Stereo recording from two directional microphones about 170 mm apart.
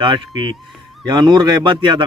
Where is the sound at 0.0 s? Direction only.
30° right (ahead or behind).